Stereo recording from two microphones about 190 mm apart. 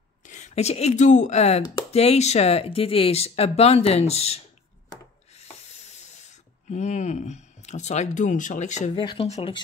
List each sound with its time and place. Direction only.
0.2 s speech: 40° left (ahead or behind)
5.3 s a sound: 35° left (ahead or behind)
9.0 s speech: 30° left (ahead or behind)